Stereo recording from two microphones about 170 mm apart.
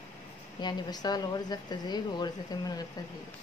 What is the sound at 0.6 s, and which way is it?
Speech, 25° left (ahead or behind).